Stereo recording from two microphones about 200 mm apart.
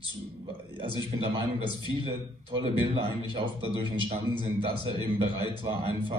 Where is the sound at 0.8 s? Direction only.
25° right (ahead or behind).